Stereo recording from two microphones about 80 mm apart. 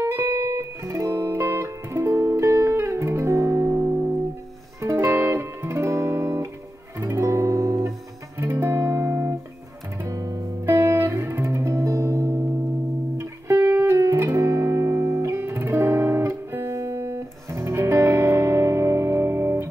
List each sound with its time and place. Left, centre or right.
0.0 s music: right
4.7 s guitar: right
7.0 s music: right
8.4 s music: right
10.0 s music: right